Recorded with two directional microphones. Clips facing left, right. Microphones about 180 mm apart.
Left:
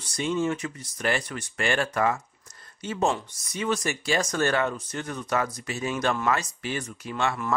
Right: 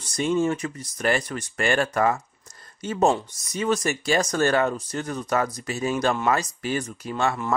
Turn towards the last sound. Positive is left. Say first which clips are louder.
# right 3 dB
turn(degrees=-40)  # may be behind; listen again after turning